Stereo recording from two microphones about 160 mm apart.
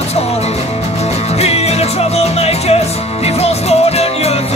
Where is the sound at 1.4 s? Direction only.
40° left (ahead or behind).